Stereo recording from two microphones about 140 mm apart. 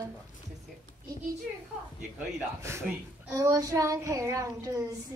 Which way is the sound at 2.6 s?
20° right (ahead or behind).